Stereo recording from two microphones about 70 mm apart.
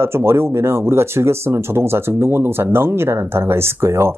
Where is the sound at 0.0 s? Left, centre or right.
Right.